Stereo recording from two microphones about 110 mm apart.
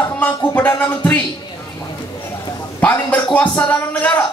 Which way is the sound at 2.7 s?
15° left (ahead or behind).